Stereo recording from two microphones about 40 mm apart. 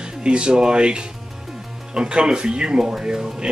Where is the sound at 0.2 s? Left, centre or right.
Right.